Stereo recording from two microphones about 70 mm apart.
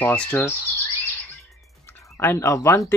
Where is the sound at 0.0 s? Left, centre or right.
Centre.